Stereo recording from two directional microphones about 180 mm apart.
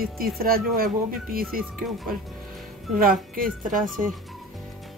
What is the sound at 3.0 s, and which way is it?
Speech, 50° right (ahead or behind).